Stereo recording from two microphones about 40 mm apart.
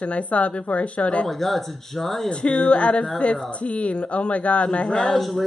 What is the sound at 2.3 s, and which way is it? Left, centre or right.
A woman's voice, left.